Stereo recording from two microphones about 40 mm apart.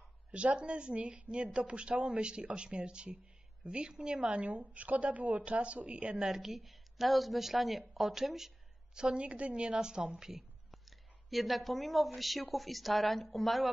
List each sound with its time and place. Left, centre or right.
0.3 s a woman's voice: right
6.2 s a woman's voice: centre
8.9 s speech: right
10.7 s speech: centre